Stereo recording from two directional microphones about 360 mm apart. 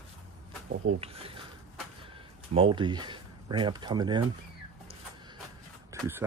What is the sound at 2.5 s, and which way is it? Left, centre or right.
Speech, centre.